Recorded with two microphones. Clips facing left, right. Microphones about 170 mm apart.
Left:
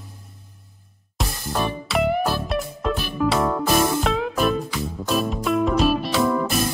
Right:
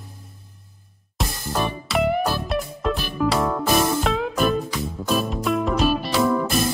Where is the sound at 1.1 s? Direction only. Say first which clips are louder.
Even; centre (ahead or behind).